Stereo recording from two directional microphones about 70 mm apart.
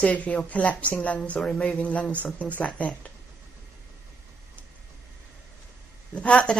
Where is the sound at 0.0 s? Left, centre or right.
Centre.